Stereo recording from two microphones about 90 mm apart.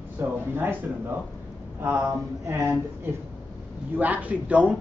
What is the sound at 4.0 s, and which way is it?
Speech, 15° right (ahead or behind).